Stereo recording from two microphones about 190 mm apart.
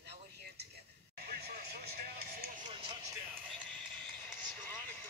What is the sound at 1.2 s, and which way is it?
Vehicle, 55° right (ahead or behind).